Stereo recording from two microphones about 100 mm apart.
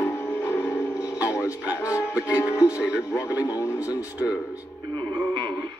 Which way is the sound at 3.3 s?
45° left (ahead or behind).